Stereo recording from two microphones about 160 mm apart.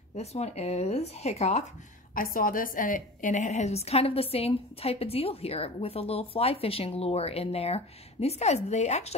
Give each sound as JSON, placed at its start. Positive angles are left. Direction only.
{"t": 0.1, "sound": "a woman's voice", "side_deg": 40}
{"t": 2.1, "sound": "a woman's voice", "side_deg": 60}